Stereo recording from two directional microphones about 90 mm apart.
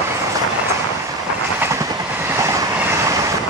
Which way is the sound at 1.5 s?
30° right (ahead or behind).